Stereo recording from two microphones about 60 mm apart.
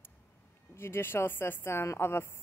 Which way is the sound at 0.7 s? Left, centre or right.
Left.